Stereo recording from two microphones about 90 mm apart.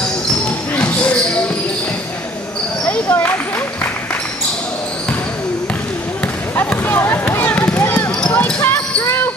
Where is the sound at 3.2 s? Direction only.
20° left (ahead or behind).